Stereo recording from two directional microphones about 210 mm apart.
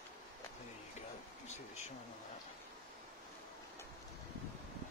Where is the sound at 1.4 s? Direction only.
35° left (ahead or behind).